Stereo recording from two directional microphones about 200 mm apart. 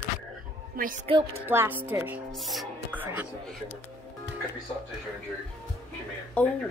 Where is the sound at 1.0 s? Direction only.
30° right (ahead or behind).